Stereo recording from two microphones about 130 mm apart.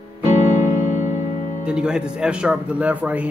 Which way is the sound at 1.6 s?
5° right (ahead or behind).